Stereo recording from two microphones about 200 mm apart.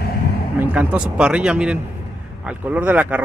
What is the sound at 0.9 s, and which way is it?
Speech, 5° right (ahead or behind).